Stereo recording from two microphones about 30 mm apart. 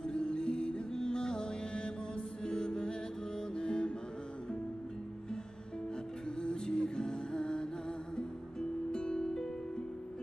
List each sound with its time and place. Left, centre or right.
0.0 s music: left
6.4 s music: left